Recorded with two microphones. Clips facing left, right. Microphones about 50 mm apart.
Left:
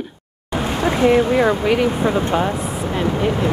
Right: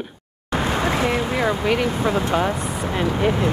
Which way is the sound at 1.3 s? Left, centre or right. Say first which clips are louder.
Left 4 dB; centre.